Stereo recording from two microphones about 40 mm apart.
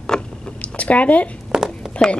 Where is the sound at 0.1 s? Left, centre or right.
Centre.